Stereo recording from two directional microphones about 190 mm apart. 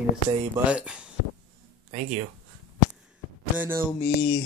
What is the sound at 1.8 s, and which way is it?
Speech, 35° right (ahead or behind).